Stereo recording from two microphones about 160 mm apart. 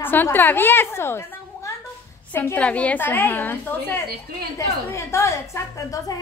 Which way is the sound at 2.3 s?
10° left (ahead or behind).